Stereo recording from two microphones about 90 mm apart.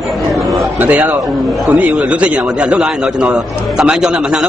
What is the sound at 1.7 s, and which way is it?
A man's voice, 15° right (ahead or behind).